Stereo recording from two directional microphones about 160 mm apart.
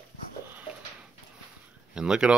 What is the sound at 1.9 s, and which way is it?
Speech, 5° right (ahead or behind).